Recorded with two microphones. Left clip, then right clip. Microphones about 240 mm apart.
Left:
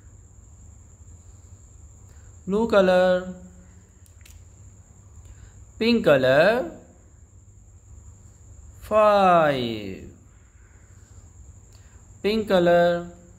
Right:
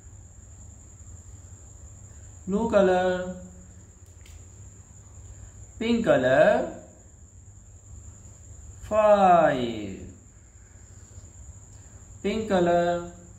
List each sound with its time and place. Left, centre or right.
2.5 s speech: left
5.8 s speech: left
8.8 s speech: left
12.2 s speech: left